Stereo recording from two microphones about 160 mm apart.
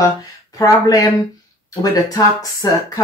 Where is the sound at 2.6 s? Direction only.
20° left (ahead or behind).